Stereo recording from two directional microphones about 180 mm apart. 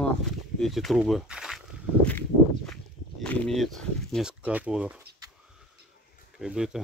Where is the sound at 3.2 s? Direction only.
5° left (ahead or behind).